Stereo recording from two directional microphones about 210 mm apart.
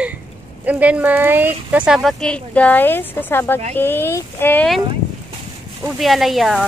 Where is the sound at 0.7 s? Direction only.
5° right (ahead or behind).